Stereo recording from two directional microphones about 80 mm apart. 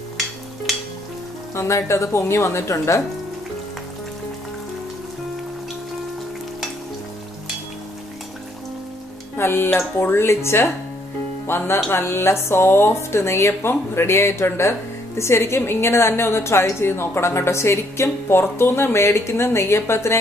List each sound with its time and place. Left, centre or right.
1.5 s speech: left
9.4 s speech: left